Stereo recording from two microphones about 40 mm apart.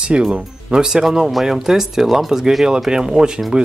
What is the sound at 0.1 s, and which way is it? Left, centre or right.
Speech, right.